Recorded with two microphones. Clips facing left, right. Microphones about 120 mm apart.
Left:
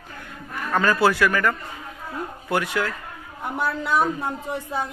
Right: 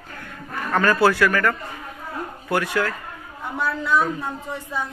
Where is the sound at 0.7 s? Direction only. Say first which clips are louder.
Right 1 dB; 15° left (ahead or behind).